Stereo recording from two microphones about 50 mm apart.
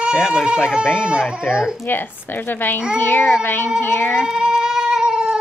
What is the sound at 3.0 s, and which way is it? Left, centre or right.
A child's voice, left.